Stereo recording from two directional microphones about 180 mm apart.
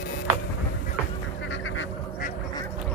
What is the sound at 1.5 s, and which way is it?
Goose, 90° left.